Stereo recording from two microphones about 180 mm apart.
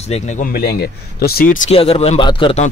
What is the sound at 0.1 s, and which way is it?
Speech, 45° left (ahead or behind).